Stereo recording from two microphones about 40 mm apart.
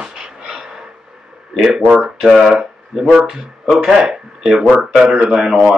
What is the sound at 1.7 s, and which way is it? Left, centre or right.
Speech, centre.